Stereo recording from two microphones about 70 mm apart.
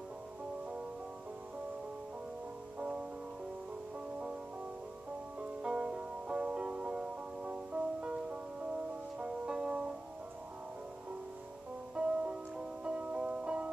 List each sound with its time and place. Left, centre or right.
2.8 s music: centre
5.4 s music: centre
11.9 s music: centre